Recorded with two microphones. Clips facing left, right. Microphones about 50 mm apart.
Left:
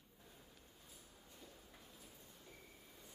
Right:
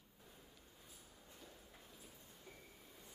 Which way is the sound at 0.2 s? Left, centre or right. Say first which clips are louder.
Right 1 dB; centre.